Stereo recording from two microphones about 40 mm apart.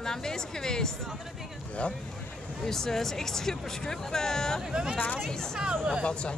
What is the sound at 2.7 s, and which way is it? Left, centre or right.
Speech, centre.